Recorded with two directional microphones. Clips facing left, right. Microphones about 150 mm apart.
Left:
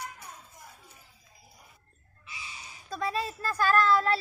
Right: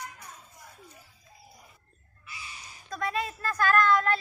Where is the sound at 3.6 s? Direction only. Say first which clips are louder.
Even; 30° left (ahead or behind).